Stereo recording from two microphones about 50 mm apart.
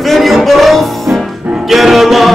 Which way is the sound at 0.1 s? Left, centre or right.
Centre.